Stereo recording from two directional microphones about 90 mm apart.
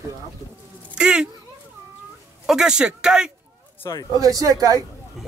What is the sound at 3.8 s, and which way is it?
Speech, 45° left (ahead or behind).